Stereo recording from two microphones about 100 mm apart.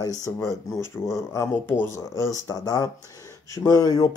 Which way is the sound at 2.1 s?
35° left (ahead or behind).